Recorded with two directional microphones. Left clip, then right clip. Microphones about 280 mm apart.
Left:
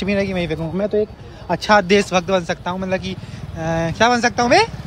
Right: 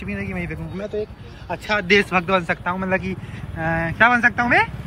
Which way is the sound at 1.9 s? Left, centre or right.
Centre.